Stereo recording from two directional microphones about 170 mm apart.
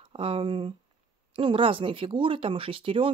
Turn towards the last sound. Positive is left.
turn(degrees=-30)  # may be behind; listen again after turning